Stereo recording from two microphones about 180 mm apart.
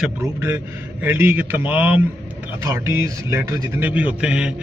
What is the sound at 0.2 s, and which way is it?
A man's voice, 15° right (ahead or behind).